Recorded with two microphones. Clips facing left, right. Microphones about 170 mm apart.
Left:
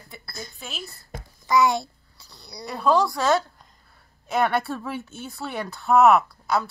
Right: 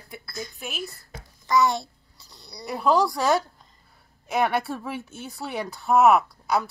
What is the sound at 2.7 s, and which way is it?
Speech, 15° right (ahead or behind).